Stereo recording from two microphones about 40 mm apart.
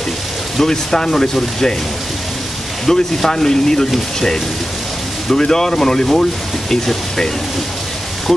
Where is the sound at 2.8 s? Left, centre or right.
Centre.